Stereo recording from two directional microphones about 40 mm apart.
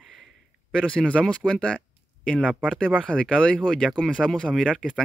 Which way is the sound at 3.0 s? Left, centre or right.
Left.